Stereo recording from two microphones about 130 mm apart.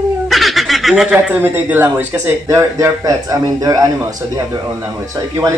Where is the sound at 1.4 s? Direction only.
15° right (ahead or behind).